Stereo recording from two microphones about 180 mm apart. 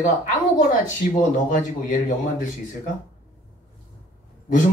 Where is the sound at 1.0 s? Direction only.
45° left (ahead or behind).